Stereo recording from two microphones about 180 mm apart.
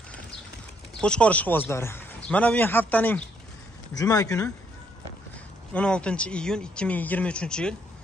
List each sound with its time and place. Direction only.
1.0 s a man's voice: 5° left (ahead or behind)
5.7 s speech: 5° left (ahead or behind)